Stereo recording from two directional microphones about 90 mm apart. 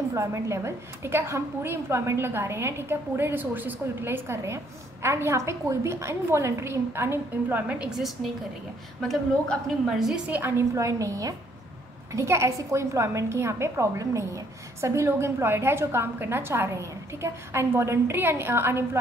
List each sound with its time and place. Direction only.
0.1 s a woman's voice: 35° right (ahead or behind); by 7.9 s 15° right (ahead or behind)
9.0 s a woman's voice: 5° left (ahead or behind)
10.3 s a woman's voice: 25° right (ahead or behind)
10.7 s a woman's voice: 35° right (ahead or behind)